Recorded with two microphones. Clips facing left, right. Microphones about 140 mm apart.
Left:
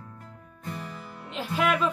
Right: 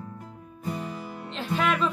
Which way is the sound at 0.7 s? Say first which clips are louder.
Right 5 dB; 15° right (ahead or behind).